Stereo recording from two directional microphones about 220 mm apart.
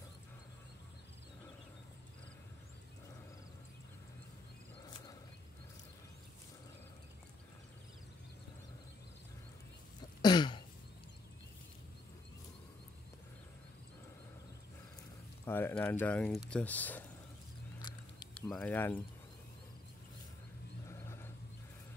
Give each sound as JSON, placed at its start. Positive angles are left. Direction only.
{"t": 4.8, "sound": "wild animals", "side_deg": 15}
{"t": 10.2, "sound": "throat clearing", "side_deg": 20}
{"t": 15.4, "sound": "speech", "side_deg": 10}
{"t": 18.5, "sound": "speech", "side_deg": 5}
{"t": 20.9, "sound": "a sound", "side_deg": 10}